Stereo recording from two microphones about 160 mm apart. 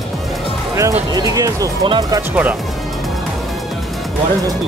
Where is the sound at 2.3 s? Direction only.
10° right (ahead or behind).